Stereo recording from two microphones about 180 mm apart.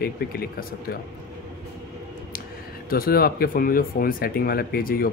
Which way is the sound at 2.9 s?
55° left (ahead or behind).